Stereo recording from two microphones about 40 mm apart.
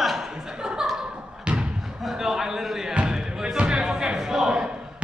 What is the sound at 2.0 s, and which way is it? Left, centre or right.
Basketball bounce, centre.